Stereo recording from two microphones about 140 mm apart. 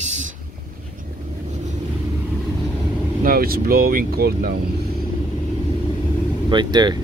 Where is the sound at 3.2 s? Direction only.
90° right.